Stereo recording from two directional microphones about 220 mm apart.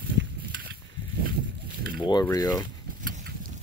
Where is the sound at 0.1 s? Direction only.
50° right (ahead or behind).